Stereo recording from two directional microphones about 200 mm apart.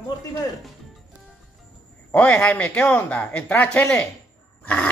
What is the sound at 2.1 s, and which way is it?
Speech, 5° left (ahead or behind).